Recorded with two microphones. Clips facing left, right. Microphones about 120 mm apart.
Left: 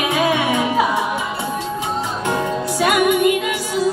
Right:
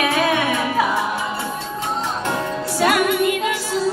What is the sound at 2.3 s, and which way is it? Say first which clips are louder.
Music: left 3 dB; 10° left (ahead or behind).